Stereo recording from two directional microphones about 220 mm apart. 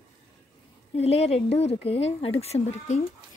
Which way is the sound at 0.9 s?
30° left (ahead or behind).